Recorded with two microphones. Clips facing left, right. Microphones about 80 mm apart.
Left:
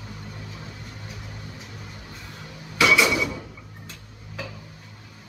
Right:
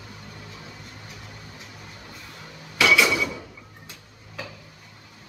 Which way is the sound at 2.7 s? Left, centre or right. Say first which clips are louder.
Even; left.